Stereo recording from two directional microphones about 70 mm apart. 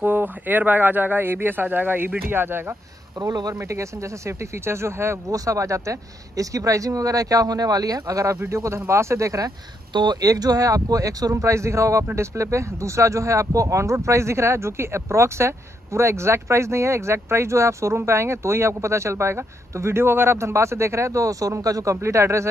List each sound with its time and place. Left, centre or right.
0.0 s speech: right
3.2 s speech: right
3.5 s speech: right
5.3 s speech: right
8.5 s speech: right
9.9 s speech: right